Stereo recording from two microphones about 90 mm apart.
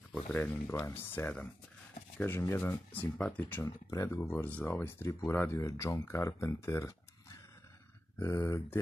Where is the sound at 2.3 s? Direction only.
30° left (ahead or behind).